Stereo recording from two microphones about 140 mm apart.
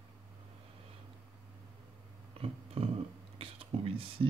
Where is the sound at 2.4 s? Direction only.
45° right (ahead or behind).